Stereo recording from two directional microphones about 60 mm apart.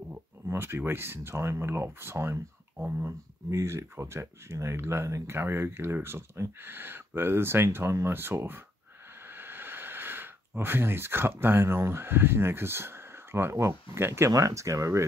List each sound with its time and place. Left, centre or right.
0.5 s speech: right
5.3 s speech: right
14.3 s speech: right